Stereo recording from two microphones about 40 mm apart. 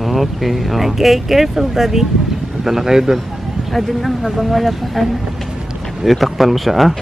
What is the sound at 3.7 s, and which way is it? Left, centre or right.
Speech, centre.